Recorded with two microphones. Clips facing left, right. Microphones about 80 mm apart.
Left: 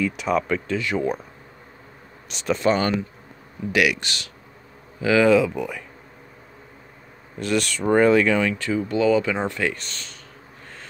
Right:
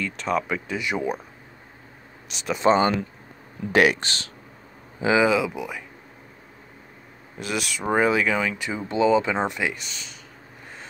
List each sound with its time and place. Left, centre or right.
0.0 s speech: centre
0.4 s speech: centre
2.2 s speech: centre
2.6 s speech: right
3.7 s speech: right
5.2 s speech: centre
7.3 s speech: centre
8.6 s speech: right; by 10.1 s centre